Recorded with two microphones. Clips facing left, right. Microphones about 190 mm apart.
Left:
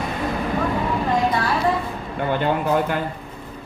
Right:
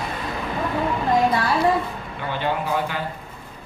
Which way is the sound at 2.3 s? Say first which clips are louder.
Left 4 dB; 50° left (ahead or behind).